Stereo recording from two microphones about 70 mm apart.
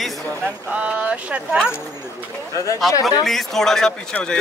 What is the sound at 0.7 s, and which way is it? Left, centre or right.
Speech, centre.